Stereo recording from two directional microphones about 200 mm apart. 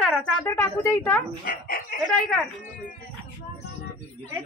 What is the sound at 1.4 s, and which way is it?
Speech, 45° left (ahead or behind).